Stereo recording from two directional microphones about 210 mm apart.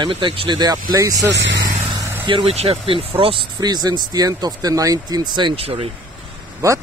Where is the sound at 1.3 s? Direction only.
55° right (ahead or behind).